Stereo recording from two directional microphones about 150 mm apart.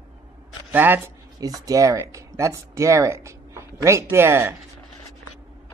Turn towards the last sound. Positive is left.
turn(degrees=-15)  # may be behind; listen again after turning